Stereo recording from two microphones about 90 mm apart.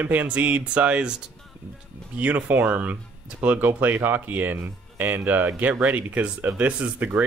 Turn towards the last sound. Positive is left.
turn(degrees=-15)  # may be behind; listen again after turning